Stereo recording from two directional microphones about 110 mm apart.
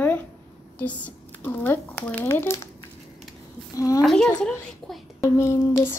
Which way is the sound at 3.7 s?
30° left (ahead or behind).